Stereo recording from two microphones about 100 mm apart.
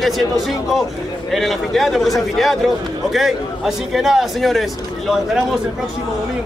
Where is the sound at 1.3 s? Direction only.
Centre (ahead or behind).